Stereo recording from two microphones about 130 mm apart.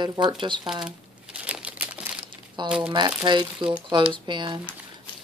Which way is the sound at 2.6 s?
35° right (ahead or behind).